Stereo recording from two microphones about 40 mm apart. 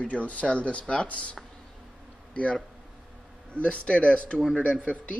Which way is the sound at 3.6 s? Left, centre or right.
Left.